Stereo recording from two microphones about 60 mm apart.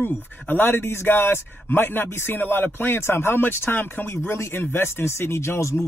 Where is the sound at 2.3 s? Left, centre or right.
Left.